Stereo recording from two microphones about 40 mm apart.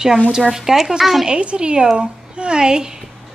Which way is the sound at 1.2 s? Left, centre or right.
Right.